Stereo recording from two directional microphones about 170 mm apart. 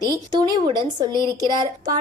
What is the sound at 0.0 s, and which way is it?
Speech, 25° right (ahead or behind).